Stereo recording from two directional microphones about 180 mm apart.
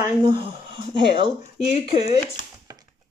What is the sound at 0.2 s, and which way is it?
Speech, 30° right (ahead or behind).